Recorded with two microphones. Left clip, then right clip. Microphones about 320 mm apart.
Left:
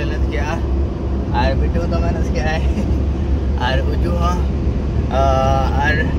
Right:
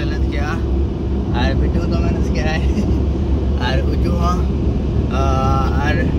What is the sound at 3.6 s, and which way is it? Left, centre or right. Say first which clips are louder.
Speech: left 2 dB; centre.